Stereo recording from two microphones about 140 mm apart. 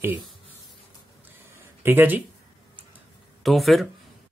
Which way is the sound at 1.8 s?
15° right (ahead or behind).